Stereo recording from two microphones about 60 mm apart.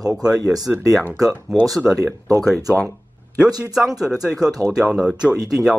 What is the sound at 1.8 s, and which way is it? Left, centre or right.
Speech, right.